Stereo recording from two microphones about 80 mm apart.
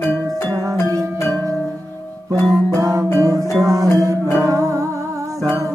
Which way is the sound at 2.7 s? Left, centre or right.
Right.